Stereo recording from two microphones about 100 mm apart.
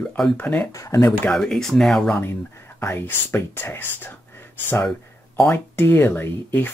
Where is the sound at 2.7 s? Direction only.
20° left (ahead or behind).